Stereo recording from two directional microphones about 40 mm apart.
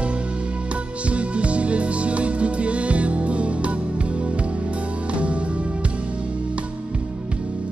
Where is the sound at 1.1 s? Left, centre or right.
Right.